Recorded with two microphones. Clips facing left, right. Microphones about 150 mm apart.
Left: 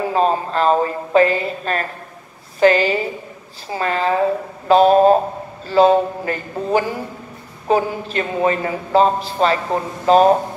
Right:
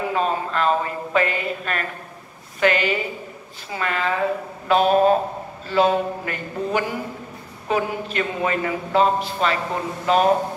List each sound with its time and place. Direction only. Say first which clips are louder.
0.1 s a man's voice: left 7 dB; 35° left (ahead or behind)